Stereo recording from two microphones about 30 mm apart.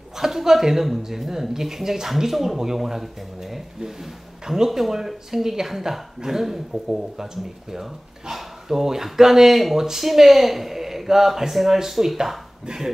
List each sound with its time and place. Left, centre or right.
0.2 s speech: centre
4.6 s speech: centre
8.3 s speech: centre